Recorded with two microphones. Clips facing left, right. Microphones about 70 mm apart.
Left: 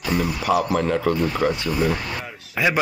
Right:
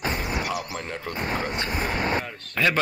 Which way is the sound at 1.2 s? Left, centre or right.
Right.